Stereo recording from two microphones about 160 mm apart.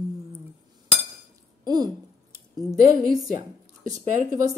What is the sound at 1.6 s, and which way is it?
A woman's voice, 25° right (ahead or behind).